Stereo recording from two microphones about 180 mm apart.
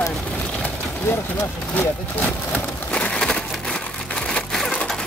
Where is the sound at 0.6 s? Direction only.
15° left (ahead or behind).